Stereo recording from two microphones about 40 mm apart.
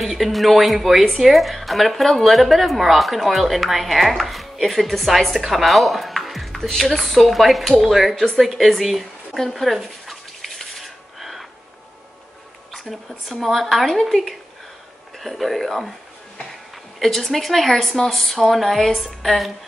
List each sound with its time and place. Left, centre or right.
0.0 s a woman's voice: centre
9.5 s a sound: centre
13.4 s speech: centre
17.0 s a woman's voice: centre